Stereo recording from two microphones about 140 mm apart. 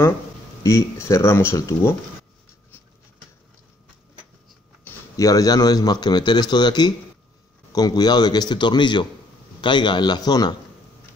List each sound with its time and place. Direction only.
0.7 s a man's voice: 20° left (ahead or behind)
5.1 s a man's voice: 25° left (ahead or behind)